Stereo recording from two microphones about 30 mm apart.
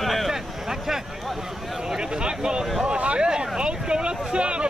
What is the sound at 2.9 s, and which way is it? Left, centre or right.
Speech, right.